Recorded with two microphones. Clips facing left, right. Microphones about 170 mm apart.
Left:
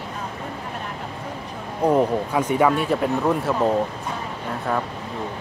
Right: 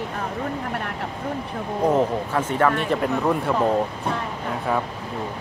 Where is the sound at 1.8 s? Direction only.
10° left (ahead or behind).